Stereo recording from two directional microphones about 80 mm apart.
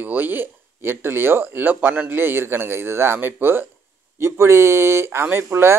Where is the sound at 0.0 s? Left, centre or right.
Right.